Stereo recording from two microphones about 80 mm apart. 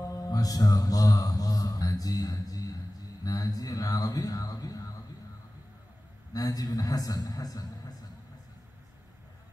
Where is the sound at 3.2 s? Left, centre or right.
Left.